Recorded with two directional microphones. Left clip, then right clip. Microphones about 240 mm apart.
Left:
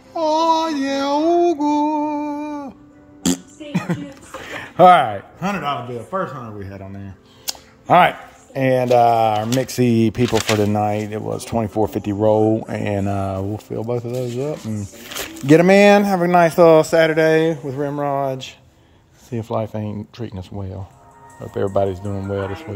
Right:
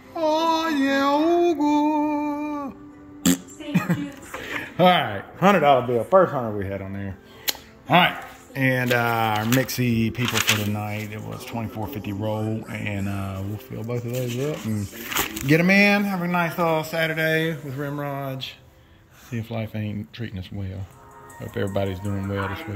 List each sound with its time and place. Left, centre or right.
0.1 s a sound: centre
3.2 s music: centre
4.7 s a man's voice: centre
6.0 s speech: right
7.9 s a man's voice: centre